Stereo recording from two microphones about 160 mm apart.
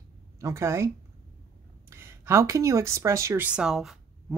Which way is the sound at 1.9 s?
15° right (ahead or behind).